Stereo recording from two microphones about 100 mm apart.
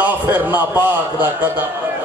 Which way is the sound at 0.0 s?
20° right (ahead or behind).